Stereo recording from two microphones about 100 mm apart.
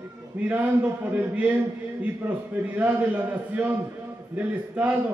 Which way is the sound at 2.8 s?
15° right (ahead or behind).